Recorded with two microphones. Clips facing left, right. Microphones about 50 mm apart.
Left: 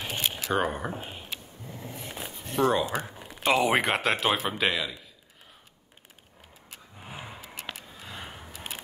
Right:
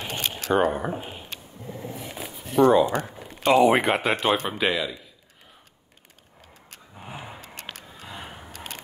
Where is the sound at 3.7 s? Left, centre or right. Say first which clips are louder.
Right 4 dB; centre.